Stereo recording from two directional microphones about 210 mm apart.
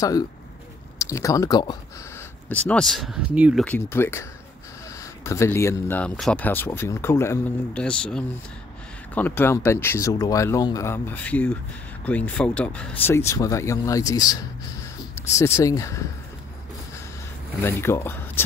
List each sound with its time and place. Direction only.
0.0 s speech: 15° left (ahead or behind)
2.5 s speech: 5° left (ahead or behind)
3.6 s speech: 10° left (ahead or behind)
17.6 s speech: 10° left (ahead or behind)